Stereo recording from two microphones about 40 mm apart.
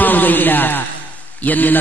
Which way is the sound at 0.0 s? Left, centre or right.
Left.